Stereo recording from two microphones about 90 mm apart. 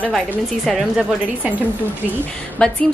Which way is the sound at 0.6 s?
Centre (ahead or behind).